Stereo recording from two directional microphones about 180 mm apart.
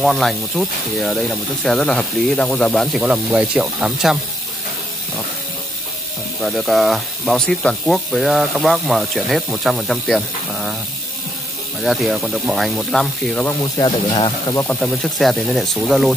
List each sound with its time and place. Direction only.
0.0 s speech: centre (ahead or behind)
6.4 s speech: centre (ahead or behind)
11.8 s speech: centre (ahead or behind)
13.6 s speech: 20° left (ahead or behind)
14.6 s speech: 5° left (ahead or behind)